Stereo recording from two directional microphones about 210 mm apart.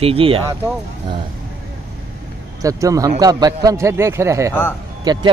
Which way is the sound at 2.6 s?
15° right (ahead or behind).